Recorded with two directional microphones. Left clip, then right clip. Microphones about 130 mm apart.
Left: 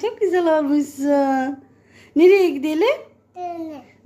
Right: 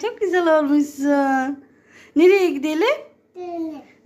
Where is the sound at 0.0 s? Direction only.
20° left (ahead or behind).